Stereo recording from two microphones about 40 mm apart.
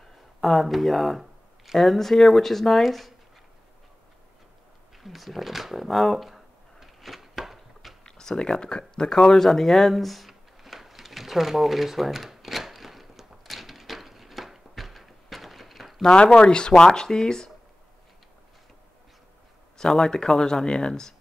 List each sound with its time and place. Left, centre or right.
0.4 s speech: centre
5.0 s a sound: centre
8.0 s speech: centre
9.3 s a sound: centre
16.0 s speech: centre
19.8 s speech: centre